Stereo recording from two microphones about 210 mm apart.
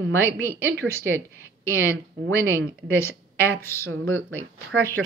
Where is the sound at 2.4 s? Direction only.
10° left (ahead or behind).